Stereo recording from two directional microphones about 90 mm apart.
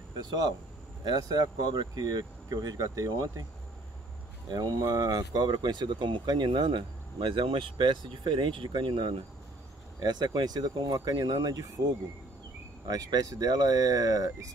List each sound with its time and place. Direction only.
0.1 s speech: 50° right (ahead or behind)
4.5 s speech: 50° right (ahead or behind)